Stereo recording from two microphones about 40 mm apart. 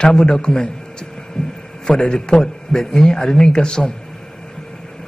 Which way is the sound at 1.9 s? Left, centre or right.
Left.